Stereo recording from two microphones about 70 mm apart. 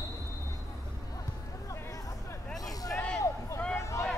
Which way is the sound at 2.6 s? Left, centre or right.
Left.